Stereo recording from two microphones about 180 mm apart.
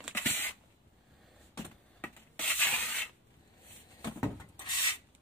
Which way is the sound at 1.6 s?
10° left (ahead or behind).